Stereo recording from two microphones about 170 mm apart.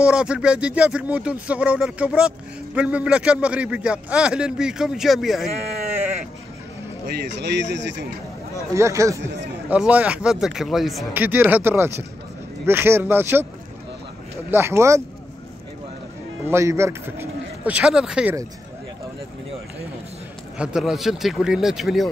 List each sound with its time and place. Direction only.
0.0 s speech: 5° right (ahead or behind)
5.5 s sheep: 40° right (ahead or behind)
7.1 s speech: 75° right (ahead or behind); by 8.1 s 90° right
8.7 s speech: 15° right (ahead or behind)
14.5 s speech: 15° right (ahead or behind)
16.4 s speech: 15° right (ahead or behind)
20.5 s speech: 5° right (ahead or behind)